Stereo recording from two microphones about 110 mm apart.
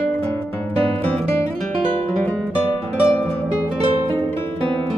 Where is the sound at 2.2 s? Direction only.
20° left (ahead or behind).